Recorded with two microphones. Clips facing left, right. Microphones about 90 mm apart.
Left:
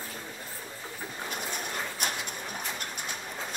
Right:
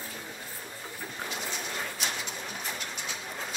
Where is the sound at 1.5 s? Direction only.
50° left (ahead or behind).